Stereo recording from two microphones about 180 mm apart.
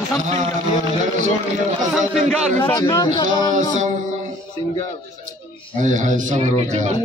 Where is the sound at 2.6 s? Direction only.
20° left (ahead or behind).